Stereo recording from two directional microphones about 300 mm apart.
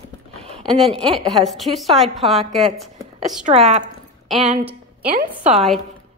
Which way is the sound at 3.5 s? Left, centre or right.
Right.